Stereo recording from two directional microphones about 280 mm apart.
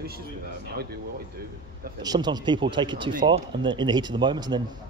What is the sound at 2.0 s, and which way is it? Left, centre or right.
A man's voice, centre.